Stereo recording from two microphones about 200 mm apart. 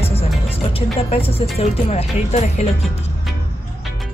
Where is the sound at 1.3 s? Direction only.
30° left (ahead or behind).